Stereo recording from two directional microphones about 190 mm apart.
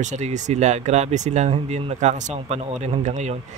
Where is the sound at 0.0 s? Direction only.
40° right (ahead or behind).